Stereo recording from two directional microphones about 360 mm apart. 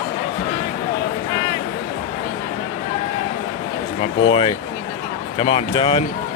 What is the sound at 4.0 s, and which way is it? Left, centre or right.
Speech, centre.